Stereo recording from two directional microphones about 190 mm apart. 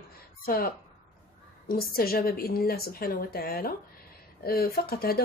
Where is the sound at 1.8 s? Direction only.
55° left (ahead or behind).